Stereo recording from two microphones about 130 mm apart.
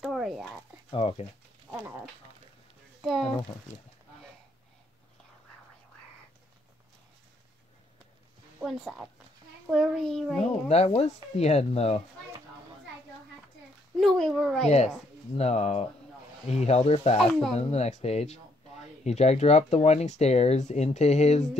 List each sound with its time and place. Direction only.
0.0 s a sound: centre (ahead or behind)
0.8 s speech: 45° left (ahead or behind)
1.7 s dog: 20° right (ahead or behind)
3.0 s speech: centre (ahead or behind)
8.6 s a child's voice: centre (ahead or behind)
10.7 s speech: 55° left (ahead or behind)
13.9 s speech: 5° left (ahead or behind)
15.3 s speech: 55° left (ahead or behind)
17.2 s speech: centre (ahead or behind)
17.6 s speech: 55° left (ahead or behind)